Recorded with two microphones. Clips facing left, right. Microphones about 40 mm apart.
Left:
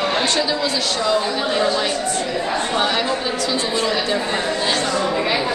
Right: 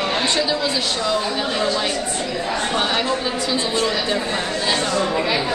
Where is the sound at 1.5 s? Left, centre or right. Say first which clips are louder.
Left 3 dB; centre.